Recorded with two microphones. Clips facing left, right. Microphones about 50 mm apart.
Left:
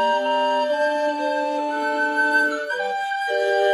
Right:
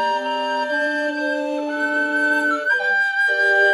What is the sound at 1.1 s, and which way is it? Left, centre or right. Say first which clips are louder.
Music: even; centre.